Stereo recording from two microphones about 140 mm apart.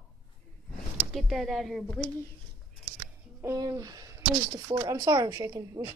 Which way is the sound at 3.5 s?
25° right (ahead or behind).